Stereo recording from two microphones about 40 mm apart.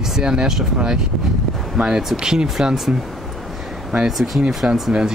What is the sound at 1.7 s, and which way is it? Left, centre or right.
Speech, right.